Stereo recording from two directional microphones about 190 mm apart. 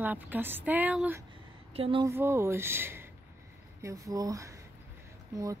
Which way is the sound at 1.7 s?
30° right (ahead or behind).